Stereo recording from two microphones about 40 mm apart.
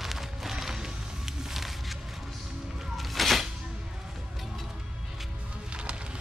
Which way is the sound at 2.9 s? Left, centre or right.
Centre.